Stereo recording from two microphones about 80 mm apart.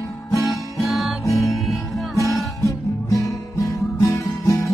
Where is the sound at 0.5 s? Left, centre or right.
Centre.